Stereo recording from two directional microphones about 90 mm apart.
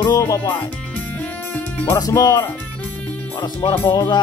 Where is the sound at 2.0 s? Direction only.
40° left (ahead or behind).